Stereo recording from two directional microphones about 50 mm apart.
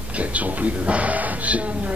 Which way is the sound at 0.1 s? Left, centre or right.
Right.